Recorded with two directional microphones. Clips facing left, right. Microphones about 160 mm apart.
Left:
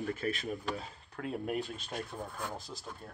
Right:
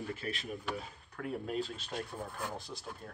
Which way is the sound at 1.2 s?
20° left (ahead or behind).